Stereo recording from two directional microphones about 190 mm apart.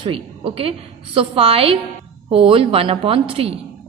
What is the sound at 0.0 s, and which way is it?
A woman's voice, 30° right (ahead or behind).